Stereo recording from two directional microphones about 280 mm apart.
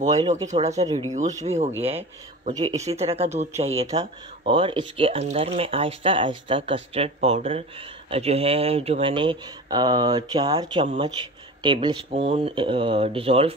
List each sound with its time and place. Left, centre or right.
0.2 s speech: right
0.8 s speech: centre
1.4 s speech: right